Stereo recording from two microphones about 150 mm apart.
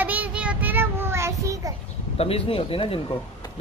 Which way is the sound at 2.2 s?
40° left (ahead or behind).